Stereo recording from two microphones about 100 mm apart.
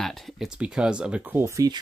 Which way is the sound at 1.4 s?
30° right (ahead or behind).